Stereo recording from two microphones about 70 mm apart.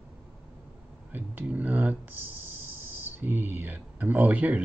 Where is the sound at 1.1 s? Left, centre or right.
Right.